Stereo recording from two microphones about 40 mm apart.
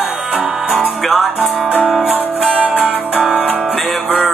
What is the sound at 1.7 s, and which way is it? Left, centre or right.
Music, right.